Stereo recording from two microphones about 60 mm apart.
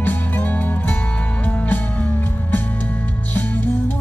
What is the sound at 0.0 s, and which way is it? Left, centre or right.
Music, left.